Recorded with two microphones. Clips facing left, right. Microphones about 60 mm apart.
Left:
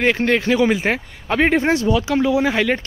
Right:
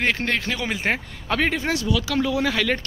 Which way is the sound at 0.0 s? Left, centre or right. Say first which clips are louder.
Left 6 dB; centre.